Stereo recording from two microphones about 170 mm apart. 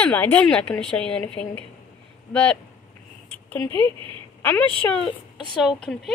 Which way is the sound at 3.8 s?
30° right (ahead or behind).